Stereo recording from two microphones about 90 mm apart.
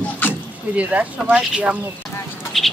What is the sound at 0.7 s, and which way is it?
Speech, 15° right (ahead or behind).